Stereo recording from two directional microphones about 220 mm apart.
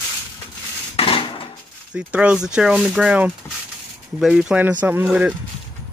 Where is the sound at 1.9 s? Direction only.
5° right (ahead or behind).